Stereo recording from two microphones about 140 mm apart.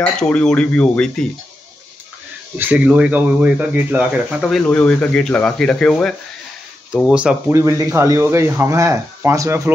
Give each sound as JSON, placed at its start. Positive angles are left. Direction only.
{"t": 0.0, "sound": "speech", "side_deg": 10}
{"t": 2.5, "sound": "speech", "side_deg": -10}
{"t": 7.2, "sound": "speech", "side_deg": -10}
{"t": 7.5, "sound": "speech", "side_deg": -20}